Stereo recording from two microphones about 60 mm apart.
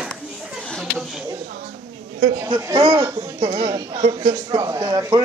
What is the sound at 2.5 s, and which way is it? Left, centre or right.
Speech, right.